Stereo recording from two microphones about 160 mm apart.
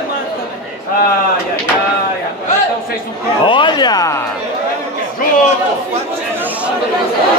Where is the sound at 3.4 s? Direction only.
30° left (ahead or behind).